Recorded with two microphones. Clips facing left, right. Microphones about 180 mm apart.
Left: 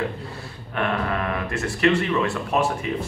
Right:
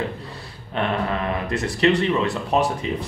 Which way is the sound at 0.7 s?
25° right (ahead or behind).